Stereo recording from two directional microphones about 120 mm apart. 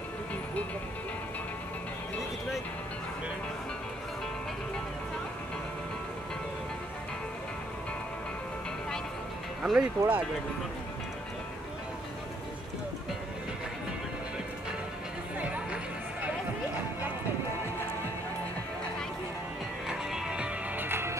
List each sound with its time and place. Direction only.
9.6 s speech: 5° right (ahead or behind)
15.4 s music: 10° right (ahead or behind)
19.9 s music: 5° right (ahead or behind)